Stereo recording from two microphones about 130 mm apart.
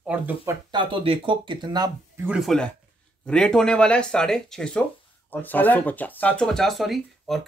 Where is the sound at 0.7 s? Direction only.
45° right (ahead or behind).